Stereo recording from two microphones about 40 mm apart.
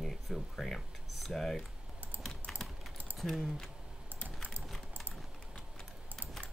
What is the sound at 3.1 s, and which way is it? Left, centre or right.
Speech, centre.